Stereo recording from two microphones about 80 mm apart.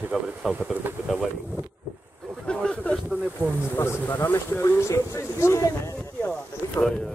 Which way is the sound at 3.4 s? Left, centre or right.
Left.